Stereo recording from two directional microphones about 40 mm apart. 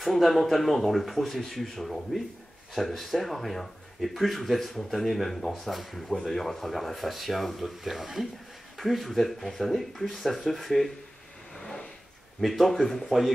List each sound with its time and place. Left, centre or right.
0.0 s speech: centre
11.5 s a sound: centre
12.4 s speech: centre